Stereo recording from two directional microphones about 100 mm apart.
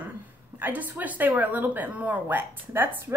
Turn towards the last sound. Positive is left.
turn(degrees=-20)  # may be behind; listen again after turning